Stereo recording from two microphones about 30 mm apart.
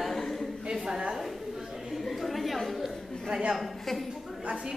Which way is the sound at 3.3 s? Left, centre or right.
Right.